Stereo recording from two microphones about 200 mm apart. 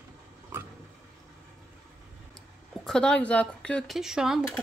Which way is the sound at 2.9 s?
5° left (ahead or behind).